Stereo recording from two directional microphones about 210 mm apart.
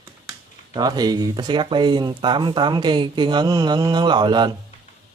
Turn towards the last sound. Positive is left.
turn(degrees=-20)  # may be behind; listen again after turning